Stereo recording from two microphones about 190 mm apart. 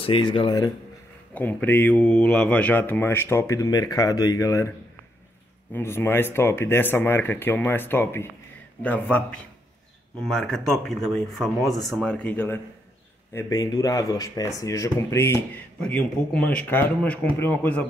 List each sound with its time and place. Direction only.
0.0 s speech: 25° left (ahead or behind)
1.3 s speech: 10° left (ahead or behind)
5.7 s speech: 10° left (ahead or behind)